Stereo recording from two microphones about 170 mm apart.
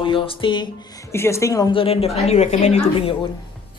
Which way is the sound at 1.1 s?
15° left (ahead or behind).